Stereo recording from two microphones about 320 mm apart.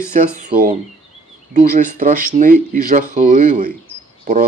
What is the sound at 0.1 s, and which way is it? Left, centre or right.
Speech, right.